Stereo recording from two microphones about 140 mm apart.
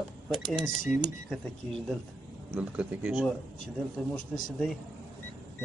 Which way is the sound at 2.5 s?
10° right (ahead or behind).